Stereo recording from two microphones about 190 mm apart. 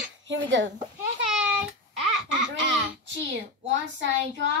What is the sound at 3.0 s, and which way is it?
A woman's voice, 70° right (ahead or behind).